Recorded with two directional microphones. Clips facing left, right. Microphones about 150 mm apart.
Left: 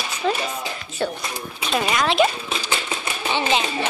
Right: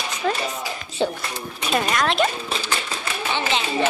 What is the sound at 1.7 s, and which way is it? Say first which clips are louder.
Speech: even; centre (ahead or behind).